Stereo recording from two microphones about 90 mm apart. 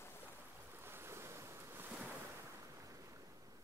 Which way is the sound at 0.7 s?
25° right (ahead or behind).